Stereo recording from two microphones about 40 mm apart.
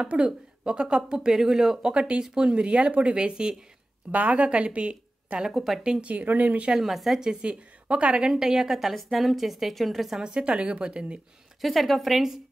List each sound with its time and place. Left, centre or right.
0.0 s speech: right; by 1.8 s centre
1.8 s speech: right
2.2 s speech: centre
2.5 s speech: right
4.1 s a woman's voice: right
5.5 s a woman's voice: centre
6.2 s speech: right
6.8 s a woman's voice: centre
7.4 s a woman's voice: right
8.3 s speech: centre
8.9 s a woman's voice: centre
10.2 s speech: right
11.6 s a woman's voice: centre